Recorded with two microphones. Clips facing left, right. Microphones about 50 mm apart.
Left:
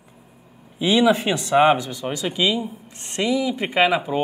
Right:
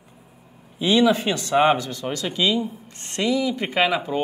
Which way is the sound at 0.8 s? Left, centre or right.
Centre.